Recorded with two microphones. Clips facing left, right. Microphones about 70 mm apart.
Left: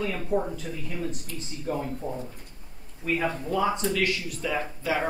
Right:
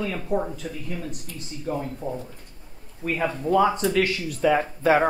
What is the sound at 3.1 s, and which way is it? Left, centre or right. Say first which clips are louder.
Speech: right 6 dB; right.